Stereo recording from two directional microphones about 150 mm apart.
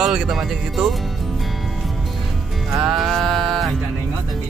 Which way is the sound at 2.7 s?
5° right (ahead or behind).